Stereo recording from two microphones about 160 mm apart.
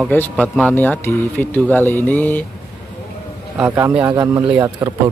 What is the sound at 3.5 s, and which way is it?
Speech, 15° right (ahead or behind).